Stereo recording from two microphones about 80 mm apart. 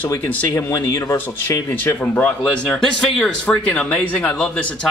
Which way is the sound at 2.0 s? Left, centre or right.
Centre.